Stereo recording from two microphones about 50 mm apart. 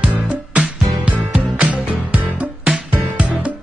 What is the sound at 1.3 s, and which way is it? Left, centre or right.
Music, right.